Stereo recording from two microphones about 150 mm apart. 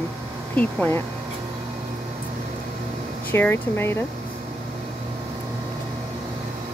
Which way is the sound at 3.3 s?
15° left (ahead or behind).